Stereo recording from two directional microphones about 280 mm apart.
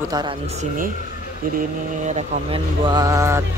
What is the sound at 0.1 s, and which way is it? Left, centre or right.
Speech, centre.